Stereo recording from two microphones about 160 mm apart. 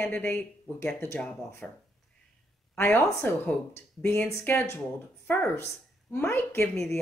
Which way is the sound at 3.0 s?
15° left (ahead or behind).